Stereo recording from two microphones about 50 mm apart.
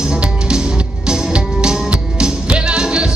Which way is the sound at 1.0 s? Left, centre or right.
Centre.